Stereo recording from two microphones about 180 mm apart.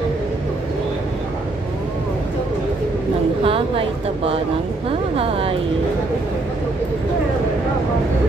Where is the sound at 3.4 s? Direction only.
30° right (ahead or behind).